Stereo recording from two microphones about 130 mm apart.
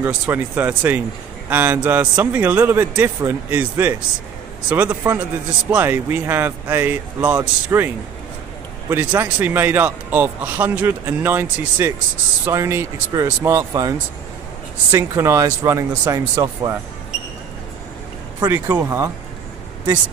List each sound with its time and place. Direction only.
0.0 s speech: 15° right (ahead or behind)
18.4 s speech: 15° right (ahead or behind)